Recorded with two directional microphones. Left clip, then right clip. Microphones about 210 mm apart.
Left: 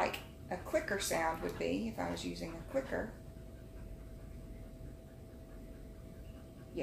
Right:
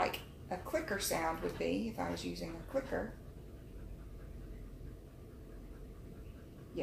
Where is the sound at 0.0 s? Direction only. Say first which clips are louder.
Even; 15° right (ahead or behind).